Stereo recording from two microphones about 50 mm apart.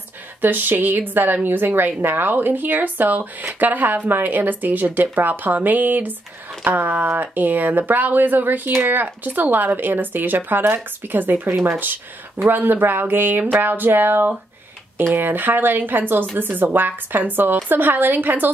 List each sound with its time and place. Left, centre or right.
0.4 s a woman's voice: right